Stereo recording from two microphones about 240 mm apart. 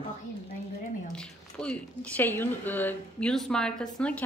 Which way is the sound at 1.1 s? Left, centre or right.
Centre.